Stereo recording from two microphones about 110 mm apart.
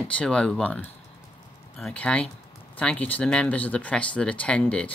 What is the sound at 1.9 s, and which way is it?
Speech, 10° left (ahead or behind).